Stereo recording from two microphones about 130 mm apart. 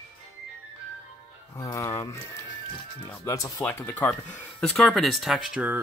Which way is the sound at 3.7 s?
15° left (ahead or behind).